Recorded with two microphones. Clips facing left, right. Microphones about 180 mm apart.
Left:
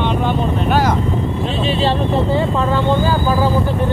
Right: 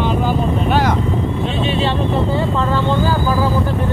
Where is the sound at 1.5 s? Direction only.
35° left (ahead or behind).